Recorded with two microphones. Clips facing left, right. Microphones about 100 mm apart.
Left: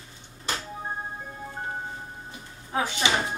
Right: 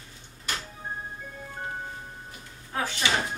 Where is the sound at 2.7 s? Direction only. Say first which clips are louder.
Left 3 dB; 15° left (ahead or behind).